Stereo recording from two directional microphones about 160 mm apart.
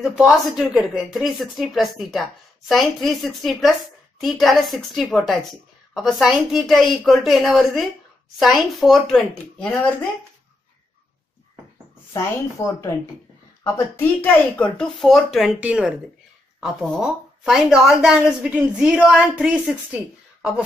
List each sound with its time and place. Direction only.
0.0 s a woman's voice: 5° right (ahead or behind)
12.1 s speech: 15° left (ahead or behind)
13.7 s a woman's voice: 15° left (ahead or behind); by 20.0 s 5° right (ahead or behind)